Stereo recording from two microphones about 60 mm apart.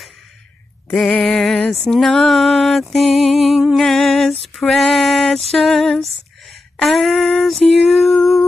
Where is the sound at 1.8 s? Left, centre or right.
Centre.